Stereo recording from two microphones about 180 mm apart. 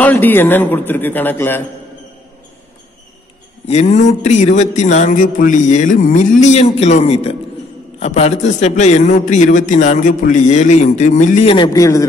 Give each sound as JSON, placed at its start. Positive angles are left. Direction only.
{"t": 0.0, "sound": "a man's voice", "side_deg": 10}
{"t": 3.6, "sound": "speech", "side_deg": 40}
{"t": 11.5, "sound": "a man's voice", "side_deg": 20}